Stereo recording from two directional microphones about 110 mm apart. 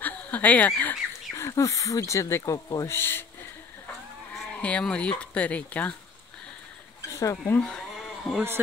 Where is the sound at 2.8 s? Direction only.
20° left (ahead or behind).